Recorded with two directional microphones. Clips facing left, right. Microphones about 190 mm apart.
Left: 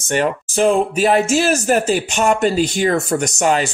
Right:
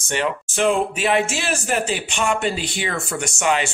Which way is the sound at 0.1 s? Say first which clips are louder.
Left 5 dB; 40° left (ahead or behind).